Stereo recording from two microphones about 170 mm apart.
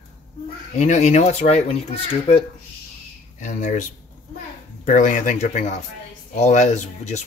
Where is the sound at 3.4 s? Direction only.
45° left (ahead or behind).